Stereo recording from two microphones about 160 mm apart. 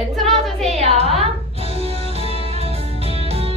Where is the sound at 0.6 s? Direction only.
40° right (ahead or behind).